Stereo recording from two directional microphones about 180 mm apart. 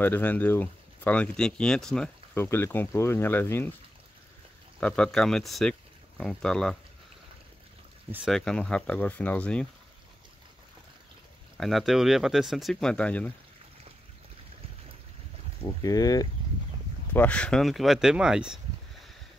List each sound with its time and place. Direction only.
0.0 s speech: 10° left (ahead or behind)
4.7 s speech: 5° left (ahead or behind)
8.1 s speech: centre (ahead or behind)
11.5 s speech: centre (ahead or behind)
15.6 s speech: 20° left (ahead or behind)
17.1 s speech: 10° left (ahead or behind)